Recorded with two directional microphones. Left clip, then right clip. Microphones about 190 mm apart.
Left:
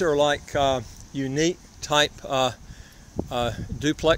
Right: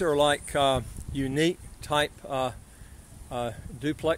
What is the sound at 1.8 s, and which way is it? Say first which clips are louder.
Speech: left 5 dB; 10° left (ahead or behind).